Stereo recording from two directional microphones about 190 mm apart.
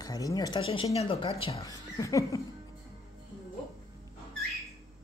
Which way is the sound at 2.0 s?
15° left (ahead or behind).